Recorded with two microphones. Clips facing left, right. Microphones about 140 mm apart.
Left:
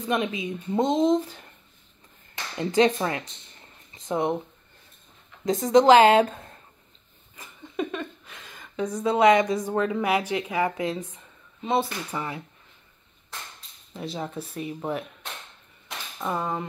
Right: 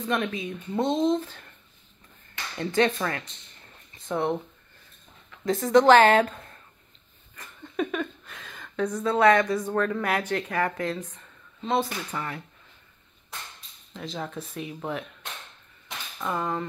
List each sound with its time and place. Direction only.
0.0 s speech: 15° left (ahead or behind)
2.6 s speech: 20° left (ahead or behind)
3.9 s a sound: 15° left (ahead or behind)
5.4 s speech: 15° left (ahead or behind)
7.3 s a woman's voice: 10° left (ahead or behind)
13.9 s speech: 10° left (ahead or behind)
16.2 s speech: 10° left (ahead or behind)